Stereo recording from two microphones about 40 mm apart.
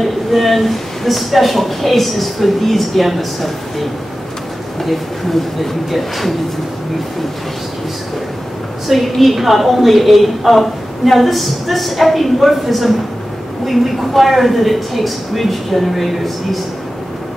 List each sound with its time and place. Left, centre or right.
0.0 s a woman's voice: centre
4.8 s a woman's voice: centre
8.8 s a woman's voice: centre